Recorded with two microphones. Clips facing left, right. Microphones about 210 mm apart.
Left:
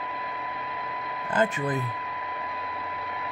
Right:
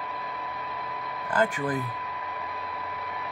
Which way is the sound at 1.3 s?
25° left (ahead or behind).